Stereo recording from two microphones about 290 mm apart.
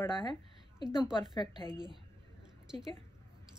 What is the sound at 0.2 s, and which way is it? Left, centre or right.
Speech, centre.